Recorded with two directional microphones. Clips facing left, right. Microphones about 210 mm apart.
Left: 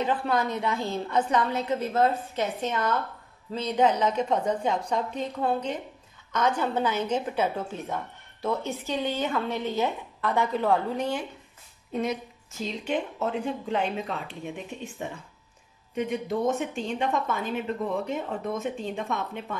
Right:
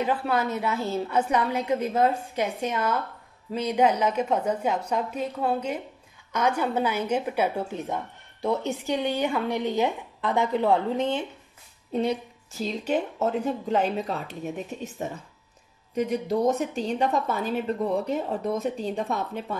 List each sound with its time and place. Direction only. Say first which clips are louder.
0.0 s a woman's voice: right 1 dB; 10° right (ahead or behind)
11.9 s a woman's voice: right 3 dB; 35° right (ahead or behind)